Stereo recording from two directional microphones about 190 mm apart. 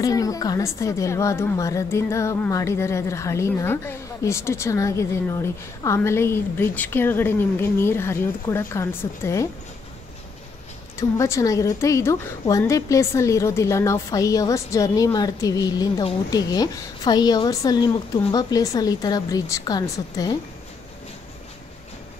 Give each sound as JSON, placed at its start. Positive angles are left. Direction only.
{"t": 0.0, "sound": "a woman's voice", "side_deg": 20}
{"t": 11.0, "sound": "a woman's voice", "side_deg": 15}